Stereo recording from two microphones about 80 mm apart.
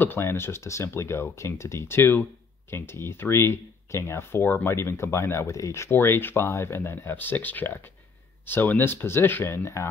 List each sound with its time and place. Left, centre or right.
0.0 s speech: left